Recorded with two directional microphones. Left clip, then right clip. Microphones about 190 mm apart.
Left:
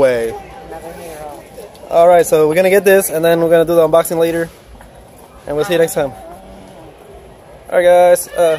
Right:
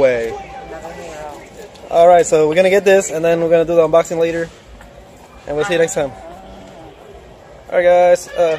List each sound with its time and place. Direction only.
0.0 s speech: 20° left (ahead or behind)
1.9 s speech: 10° left (ahead or behind)
5.5 s speech: 15° left (ahead or behind)
7.7 s speech: 15° left (ahead or behind)